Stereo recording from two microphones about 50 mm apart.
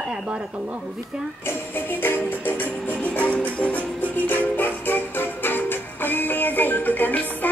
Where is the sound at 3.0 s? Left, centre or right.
Left.